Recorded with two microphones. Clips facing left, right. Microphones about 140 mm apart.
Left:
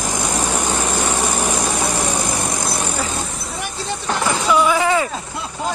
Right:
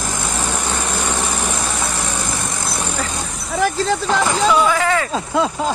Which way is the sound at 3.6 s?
90° right.